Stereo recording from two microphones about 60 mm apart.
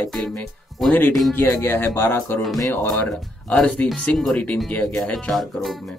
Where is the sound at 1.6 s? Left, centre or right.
Left.